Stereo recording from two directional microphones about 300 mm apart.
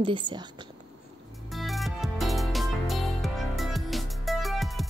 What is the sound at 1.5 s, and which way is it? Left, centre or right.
Music, centre.